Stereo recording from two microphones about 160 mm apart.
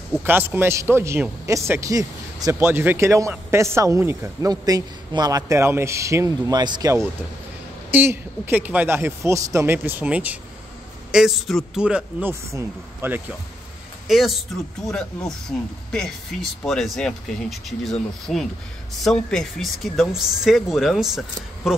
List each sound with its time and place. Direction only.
0.2 s a man's voice: 10° right (ahead or behind)
14.0 s speech: centre (ahead or behind)